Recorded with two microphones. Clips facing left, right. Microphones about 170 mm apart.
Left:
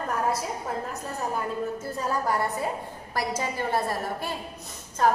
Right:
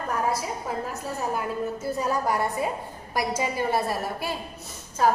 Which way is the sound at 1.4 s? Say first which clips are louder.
Right 1 dB; 10° right (ahead or behind).